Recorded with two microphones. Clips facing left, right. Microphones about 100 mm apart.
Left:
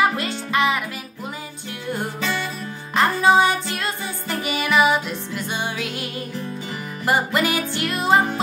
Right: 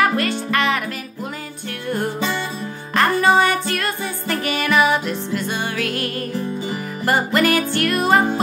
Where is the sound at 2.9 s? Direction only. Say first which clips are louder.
Right 1 dB; 15° left (ahead or behind).